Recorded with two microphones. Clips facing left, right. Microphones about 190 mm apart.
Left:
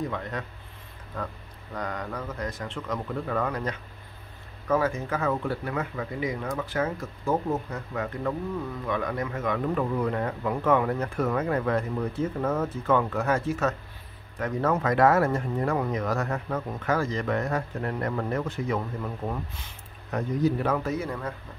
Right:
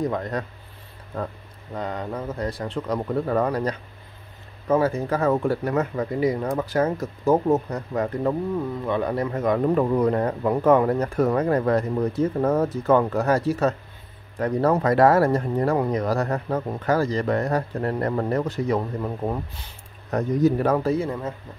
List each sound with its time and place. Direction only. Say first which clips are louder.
0.0 s speech: right 6 dB; 40° right (ahead or behind)
1.1 s speech: right 5 dB; 25° right (ahead or behind)